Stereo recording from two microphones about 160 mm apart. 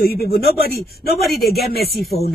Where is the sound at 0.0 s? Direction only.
70° left (ahead or behind).